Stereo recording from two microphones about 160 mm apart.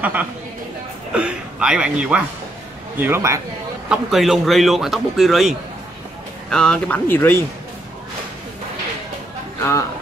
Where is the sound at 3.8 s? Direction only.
Centre (ahead or behind); by 7.4 s 15° left (ahead or behind).